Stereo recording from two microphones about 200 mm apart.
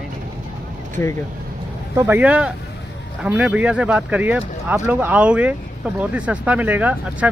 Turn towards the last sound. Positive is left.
turn(degrees=-5)  # may be behind; listen again after turning